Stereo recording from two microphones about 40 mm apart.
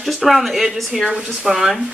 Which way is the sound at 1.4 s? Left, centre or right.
Centre.